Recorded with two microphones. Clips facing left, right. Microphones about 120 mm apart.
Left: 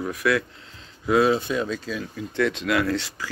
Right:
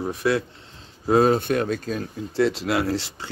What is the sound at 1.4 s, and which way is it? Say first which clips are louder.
Speech: right 3 dB; 60° right (ahead or behind).